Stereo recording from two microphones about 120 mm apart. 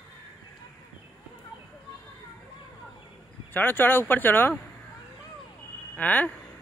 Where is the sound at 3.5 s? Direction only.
15° left (ahead or behind).